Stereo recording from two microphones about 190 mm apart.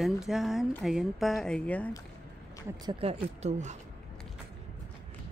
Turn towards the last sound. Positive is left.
turn(degrees=-40)  # may be behind; listen again after turning